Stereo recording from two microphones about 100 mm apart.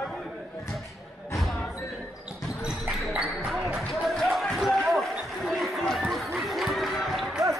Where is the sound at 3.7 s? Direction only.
Centre (ahead or behind).